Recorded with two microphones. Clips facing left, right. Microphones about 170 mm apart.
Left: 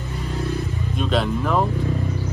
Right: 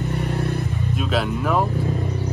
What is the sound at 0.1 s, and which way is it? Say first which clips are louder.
Vehicle: left 1 dB; 60° right (ahead or behind).